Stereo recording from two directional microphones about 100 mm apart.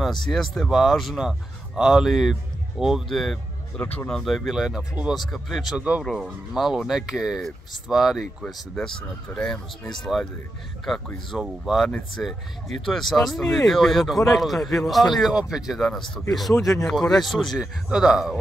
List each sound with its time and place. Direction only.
0.0 s speech: 5° left (ahead or behind)
3.8 s speech: 20° left (ahead or behind)
4.1 s speech: centre (ahead or behind)
5.8 s speech: 15° right (ahead or behind)
6.0 s speech: centre (ahead or behind)
9.3 s speech: 10° left (ahead or behind)
11.3 s speech: 5° right (ahead or behind)